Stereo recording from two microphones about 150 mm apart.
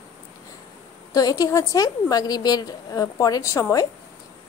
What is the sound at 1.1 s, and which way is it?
A woman's voice, 25° left (ahead or behind).